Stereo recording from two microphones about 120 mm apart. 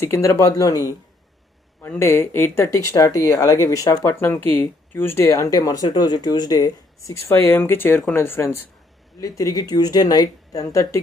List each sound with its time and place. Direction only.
0.0 s speech: 20° left (ahead or behind)